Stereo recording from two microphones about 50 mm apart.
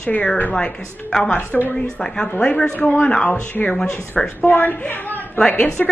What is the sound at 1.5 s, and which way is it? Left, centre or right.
Speech, left.